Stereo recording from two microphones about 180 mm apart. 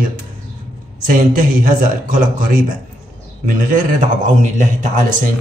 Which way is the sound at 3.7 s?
50° right (ahead or behind).